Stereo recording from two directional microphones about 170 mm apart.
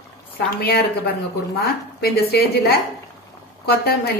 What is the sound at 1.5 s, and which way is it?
A woman's voice, 65° left (ahead or behind).